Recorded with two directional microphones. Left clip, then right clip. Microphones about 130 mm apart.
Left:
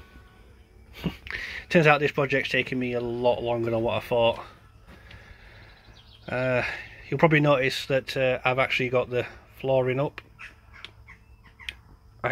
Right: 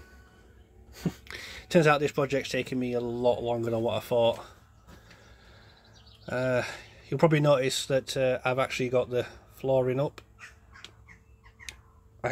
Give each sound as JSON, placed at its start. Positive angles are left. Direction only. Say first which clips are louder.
{"t": 0.9, "sound": "a sound", "louder": "left 2 dB", "side_deg": -55}
{"t": 1.2, "sound": "speech", "louder": "left 8 dB", "side_deg": -25}
{"t": 6.2, "sound": "speech", "louder": "left 3 dB", "side_deg": -20}